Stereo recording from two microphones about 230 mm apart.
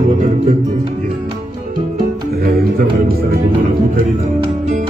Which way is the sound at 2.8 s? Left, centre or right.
Right.